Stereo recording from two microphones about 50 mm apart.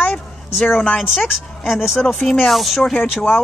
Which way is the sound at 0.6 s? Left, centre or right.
Left.